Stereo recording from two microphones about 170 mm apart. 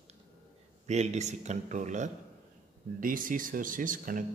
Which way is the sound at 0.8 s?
40° right (ahead or behind).